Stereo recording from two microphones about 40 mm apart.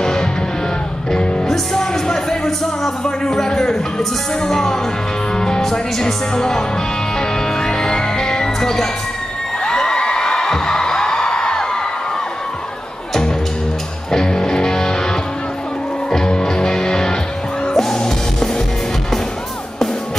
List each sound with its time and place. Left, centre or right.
0.0 s music: centre
1.5 s music: centre
3.7 s speech: centre
7.2 s music: centre
14.1 s music: centre
16.1 s music: centre